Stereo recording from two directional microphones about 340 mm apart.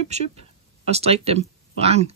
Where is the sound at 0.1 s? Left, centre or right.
Centre.